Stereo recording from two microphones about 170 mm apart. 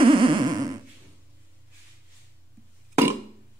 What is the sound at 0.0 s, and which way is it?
Music, 30° right (ahead or behind).